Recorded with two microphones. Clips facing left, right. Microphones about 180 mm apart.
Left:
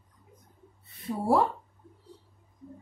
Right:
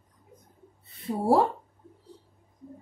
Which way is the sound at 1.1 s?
30° right (ahead or behind).